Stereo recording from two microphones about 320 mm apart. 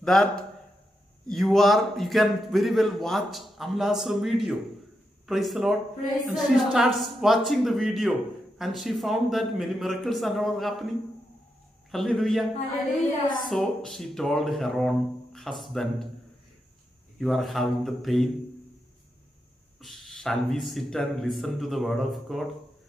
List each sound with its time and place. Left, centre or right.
0.0 s a man's voice: centre
11.9 s a man's voice: centre
13.5 s a man's voice: centre
17.2 s a man's voice: centre
19.8 s a man's voice: centre